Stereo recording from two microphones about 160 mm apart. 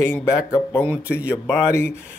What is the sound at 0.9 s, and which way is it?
Speech, 10° right (ahead or behind).